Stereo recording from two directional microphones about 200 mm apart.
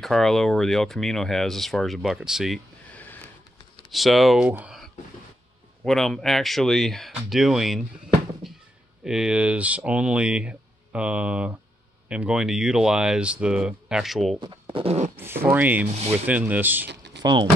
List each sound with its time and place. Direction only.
0.0 s speech: centre (ahead or behind)
8.4 s a sound: centre (ahead or behind)
9.0 s speech: 5° right (ahead or behind)
14.4 s speech: 25° right (ahead or behind)
15.1 s speech: 10° right (ahead or behind)
16.8 s typing: 60° right (ahead or behind)
17.2 s speech: 20° right (ahead or behind)